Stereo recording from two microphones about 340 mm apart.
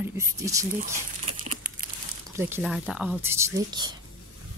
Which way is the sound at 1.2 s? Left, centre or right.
Centre.